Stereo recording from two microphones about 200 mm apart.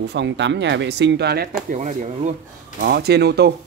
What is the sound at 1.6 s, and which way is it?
Speech, 35° right (ahead or behind).